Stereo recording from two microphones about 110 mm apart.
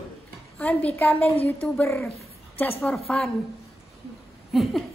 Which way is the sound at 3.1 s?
10° left (ahead or behind).